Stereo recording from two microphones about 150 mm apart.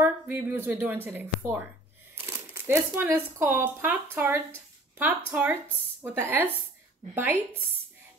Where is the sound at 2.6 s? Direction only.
15° right (ahead or behind).